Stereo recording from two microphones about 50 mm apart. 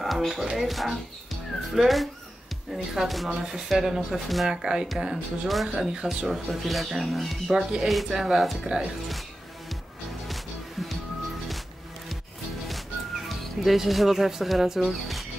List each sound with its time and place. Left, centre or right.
0.0 s music: centre
0.6 s speech: centre
3.3 s speech: centre
4.5 s speech: centre
5.5 s speech: centre
7.5 s speech: centre
7.9 s speech: centre
13.3 s speech: centre